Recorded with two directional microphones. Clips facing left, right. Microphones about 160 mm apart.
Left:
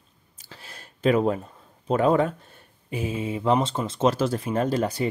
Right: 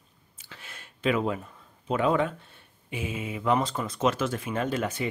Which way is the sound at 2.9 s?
35° left (ahead or behind).